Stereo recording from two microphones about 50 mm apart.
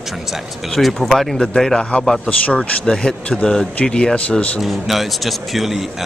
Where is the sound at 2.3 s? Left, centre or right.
Left.